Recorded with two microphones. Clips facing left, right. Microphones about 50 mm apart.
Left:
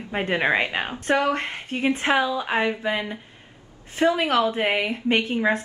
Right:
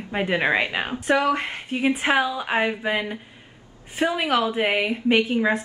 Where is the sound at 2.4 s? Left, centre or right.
Right; by 5.6 s centre.